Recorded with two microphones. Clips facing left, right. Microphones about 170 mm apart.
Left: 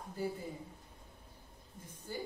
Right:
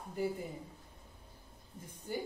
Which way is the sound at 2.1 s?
20° right (ahead or behind).